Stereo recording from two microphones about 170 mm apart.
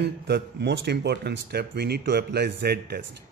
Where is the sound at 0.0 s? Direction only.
80° right.